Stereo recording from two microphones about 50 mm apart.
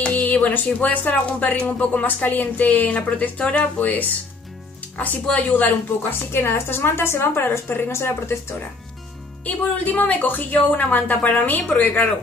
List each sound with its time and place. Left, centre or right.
0.0 s speech: left
2.2 s speech: left
5.2 s speech: left
6.3 s a woman's voice: left
7.9 s speech: left
9.5 s speech: left